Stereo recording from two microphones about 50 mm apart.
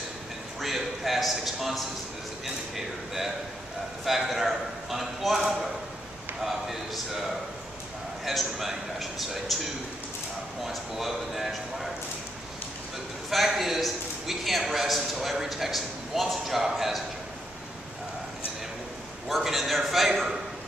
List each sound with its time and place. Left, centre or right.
0.6 s a man's voice: centre
4.0 s a man's voice: centre
8.3 s a man's voice: centre
10.6 s a man's voice: centre
13.3 s a man's voice: centre
19.2 s a man's voice: centre